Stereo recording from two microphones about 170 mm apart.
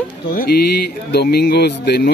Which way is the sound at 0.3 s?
65° left (ahead or behind).